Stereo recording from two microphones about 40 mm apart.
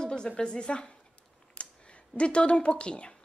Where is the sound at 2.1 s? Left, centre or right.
Left.